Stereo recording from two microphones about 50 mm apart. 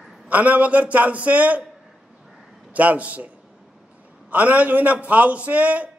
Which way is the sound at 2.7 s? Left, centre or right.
Right.